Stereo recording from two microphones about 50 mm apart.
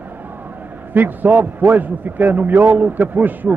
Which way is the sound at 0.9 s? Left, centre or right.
Right.